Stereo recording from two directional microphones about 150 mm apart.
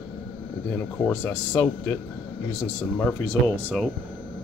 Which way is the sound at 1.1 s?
15° left (ahead or behind).